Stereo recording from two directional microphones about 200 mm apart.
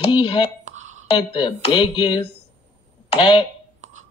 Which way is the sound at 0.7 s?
90° right.